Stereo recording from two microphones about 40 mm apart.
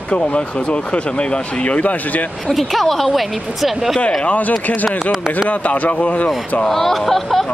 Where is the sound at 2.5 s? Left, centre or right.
Centre.